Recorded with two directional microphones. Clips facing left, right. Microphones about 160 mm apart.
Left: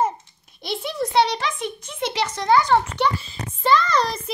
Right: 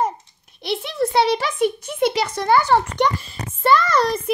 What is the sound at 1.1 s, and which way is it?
A child's voice, 5° right (ahead or behind).